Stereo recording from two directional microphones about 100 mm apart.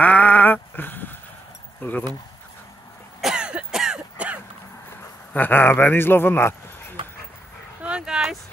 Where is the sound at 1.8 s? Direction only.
15° left (ahead or behind).